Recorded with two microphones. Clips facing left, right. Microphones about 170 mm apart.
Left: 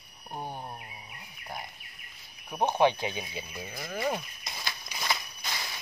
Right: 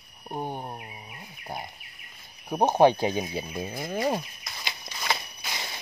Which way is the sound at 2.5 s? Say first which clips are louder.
Right 5 dB; 40° right (ahead or behind).